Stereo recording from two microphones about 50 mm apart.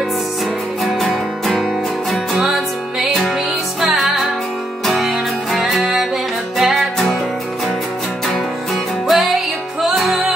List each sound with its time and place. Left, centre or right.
0.8 s music: centre
2.3 s music: centre
9.0 s music: centre